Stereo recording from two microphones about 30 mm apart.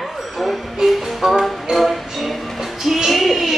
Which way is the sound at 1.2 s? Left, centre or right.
Centre.